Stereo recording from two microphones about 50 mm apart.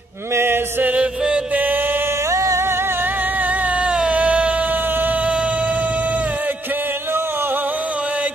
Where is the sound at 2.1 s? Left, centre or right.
Right.